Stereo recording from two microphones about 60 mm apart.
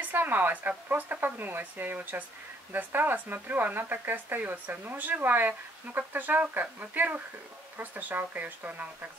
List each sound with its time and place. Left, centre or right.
0.0 s speech: right